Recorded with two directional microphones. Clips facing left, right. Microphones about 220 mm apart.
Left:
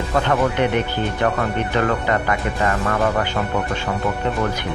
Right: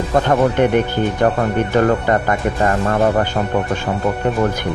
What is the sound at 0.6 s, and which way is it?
Speech, 45° right (ahead or behind).